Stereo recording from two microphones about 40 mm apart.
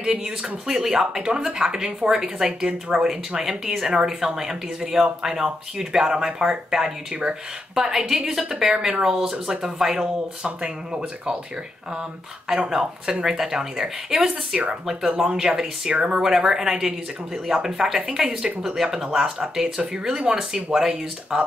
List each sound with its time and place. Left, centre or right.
0.0 s speech: centre
12.5 s speech: centre
15.9 s speech: right
16.2 s speech: centre